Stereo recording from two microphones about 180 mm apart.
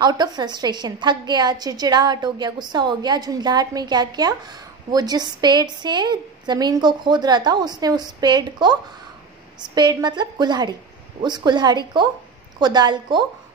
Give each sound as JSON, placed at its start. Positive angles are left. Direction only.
{"t": 0.0, "sound": "a woman's voice", "side_deg": -25}